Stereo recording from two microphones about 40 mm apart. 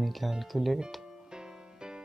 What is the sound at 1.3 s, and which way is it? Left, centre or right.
Music, centre.